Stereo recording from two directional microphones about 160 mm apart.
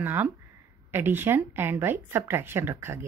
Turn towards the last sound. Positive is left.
turn(degrees=-15)  # may be behind; listen again after turning